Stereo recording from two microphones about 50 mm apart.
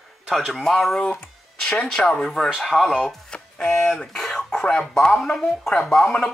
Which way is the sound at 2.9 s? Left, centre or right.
Centre.